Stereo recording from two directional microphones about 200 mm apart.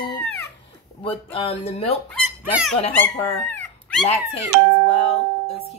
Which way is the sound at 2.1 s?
Centre (ahead or behind).